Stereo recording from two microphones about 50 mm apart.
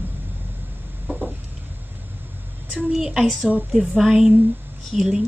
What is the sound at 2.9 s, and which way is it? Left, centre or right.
Speech, centre.